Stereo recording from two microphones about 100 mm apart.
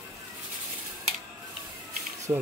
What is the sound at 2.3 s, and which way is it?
Speech, 25° right (ahead or behind).